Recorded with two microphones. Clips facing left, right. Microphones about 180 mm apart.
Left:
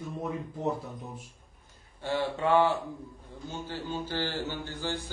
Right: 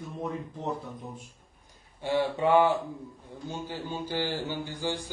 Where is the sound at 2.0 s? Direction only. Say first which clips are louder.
Right 3 dB; 15° right (ahead or behind).